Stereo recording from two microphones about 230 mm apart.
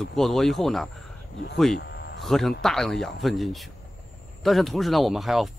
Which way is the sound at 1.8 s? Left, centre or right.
Left.